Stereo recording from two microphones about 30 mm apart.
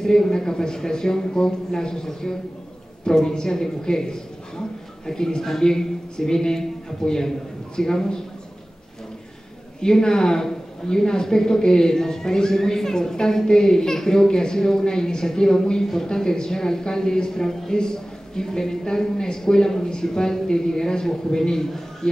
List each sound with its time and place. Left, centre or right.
0.0 s a woman's voice: centre
9.8 s a woman's voice: left